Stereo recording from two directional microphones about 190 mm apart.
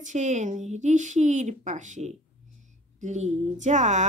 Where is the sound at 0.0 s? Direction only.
40° right (ahead or behind).